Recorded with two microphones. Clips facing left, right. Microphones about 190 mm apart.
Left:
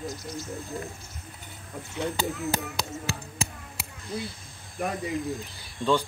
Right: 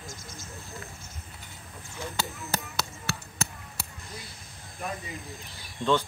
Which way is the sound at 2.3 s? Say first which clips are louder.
Left 6 dB; 65° left (ahead or behind).